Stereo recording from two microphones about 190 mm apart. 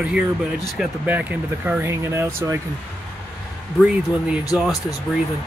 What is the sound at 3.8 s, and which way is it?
Speech, 5° right (ahead or behind).